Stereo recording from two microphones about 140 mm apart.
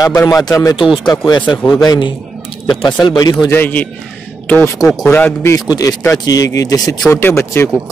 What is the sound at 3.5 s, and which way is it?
A man's voice, 10° left (ahead or behind).